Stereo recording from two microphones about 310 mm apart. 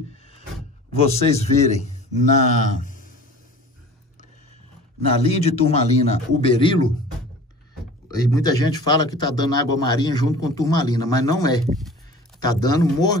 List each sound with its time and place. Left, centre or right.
1.1 s a man's voice: left
5.2 s a man's voice: centre
8.1 s a man's voice: centre
11.6 s speech: centre
12.4 s a man's voice: centre